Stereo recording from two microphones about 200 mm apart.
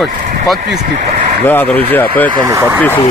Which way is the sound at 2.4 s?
15° right (ahead or behind).